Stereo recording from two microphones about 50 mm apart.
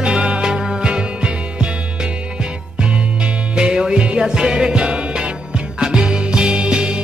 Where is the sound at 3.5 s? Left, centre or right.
Centre.